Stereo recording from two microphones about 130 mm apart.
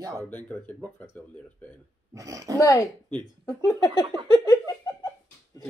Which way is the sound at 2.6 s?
25° left (ahead or behind).